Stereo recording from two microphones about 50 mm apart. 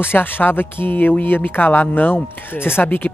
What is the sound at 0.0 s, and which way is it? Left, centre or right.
Speech, left.